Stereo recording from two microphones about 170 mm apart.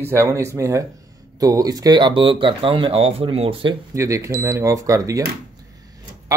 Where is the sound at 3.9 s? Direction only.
20° right (ahead or behind).